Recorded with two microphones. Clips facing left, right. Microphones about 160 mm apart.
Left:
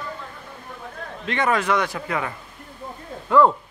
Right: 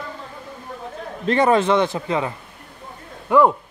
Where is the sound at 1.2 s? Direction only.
35° right (ahead or behind).